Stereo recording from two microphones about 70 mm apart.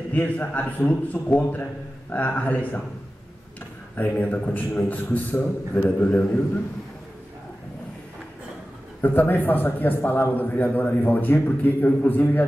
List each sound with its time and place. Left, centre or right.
0.1 s a man's voice: left
3.9 s a man's voice: left
9.0 s a man's voice: left